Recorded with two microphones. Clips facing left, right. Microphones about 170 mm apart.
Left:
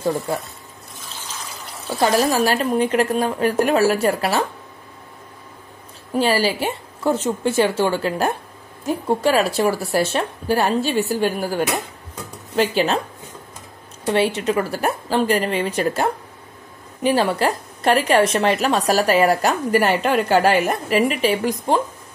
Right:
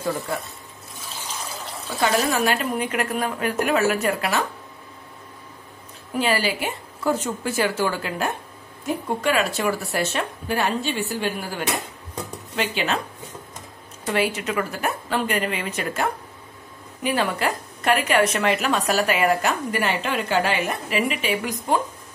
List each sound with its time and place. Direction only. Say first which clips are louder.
2.0 s a woman's voice: left 4 dB; 30° left (ahead or behind)
6.1 s a woman's voice: left 4 dB; 30° left (ahead or behind)
14.0 s a woman's voice: left 5 dB; 30° left (ahead or behind)